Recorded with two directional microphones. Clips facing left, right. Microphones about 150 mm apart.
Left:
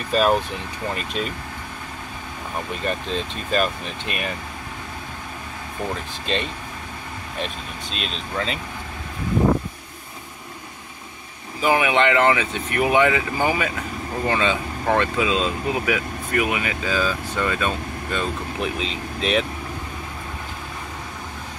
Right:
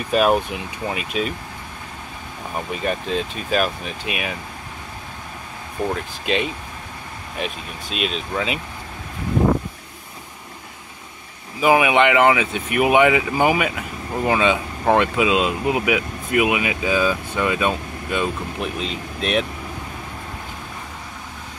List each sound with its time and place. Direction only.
0.1 s speech: 10° right (ahead or behind)
2.7 s speech: 5° right (ahead or behind)
5.8 s speech: centre (ahead or behind)
11.6 s speech: 10° right (ahead or behind)
18.6 s speech: centre (ahead or behind)